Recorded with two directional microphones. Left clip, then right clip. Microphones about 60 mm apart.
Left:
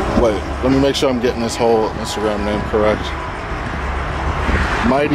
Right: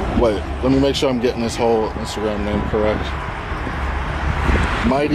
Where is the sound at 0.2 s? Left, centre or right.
Centre.